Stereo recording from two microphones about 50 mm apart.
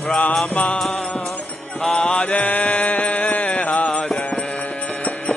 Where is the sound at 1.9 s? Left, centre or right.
Centre.